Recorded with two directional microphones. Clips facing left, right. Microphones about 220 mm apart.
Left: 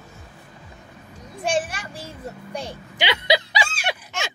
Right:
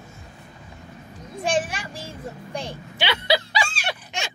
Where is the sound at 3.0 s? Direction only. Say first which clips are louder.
Left 1 dB; 15° left (ahead or behind).